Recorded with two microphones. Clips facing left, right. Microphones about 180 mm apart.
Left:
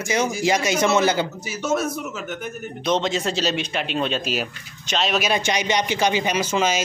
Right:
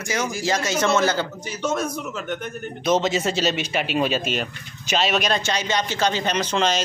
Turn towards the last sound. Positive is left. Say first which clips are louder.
# left 1 dB
turn(degrees=5)  # may be behind; listen again after turning